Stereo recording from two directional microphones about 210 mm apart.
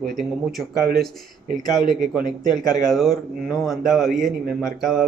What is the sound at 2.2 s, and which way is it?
Speech, 20° left (ahead or behind).